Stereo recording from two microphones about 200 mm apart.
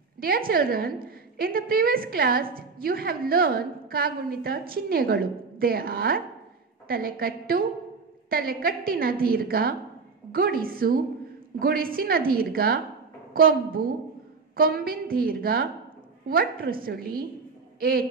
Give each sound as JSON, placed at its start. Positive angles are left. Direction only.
{"t": 0.5, "sound": "a woman's voice", "side_deg": -45}